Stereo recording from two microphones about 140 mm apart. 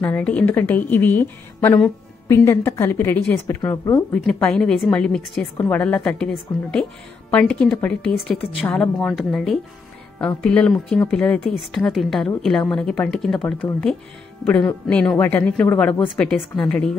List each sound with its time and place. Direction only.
0.0 s a woman's voice: 10° left (ahead or behind)
2.2 s a woman's voice: 15° left (ahead or behind)